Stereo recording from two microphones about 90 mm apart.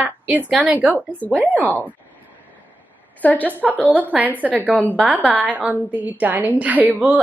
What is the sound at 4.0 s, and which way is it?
A woman's voice, 20° right (ahead or behind).